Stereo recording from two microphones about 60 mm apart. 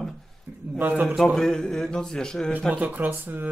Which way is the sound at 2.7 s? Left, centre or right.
Right.